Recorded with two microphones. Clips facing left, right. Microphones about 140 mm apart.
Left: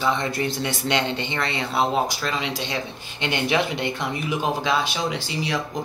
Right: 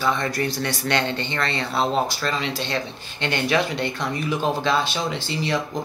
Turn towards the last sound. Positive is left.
turn(degrees=5)  # may be behind; listen again after turning